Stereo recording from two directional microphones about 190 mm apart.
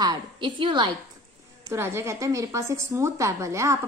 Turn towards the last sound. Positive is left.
turn(degrees=-15)  # may be behind; listen again after turning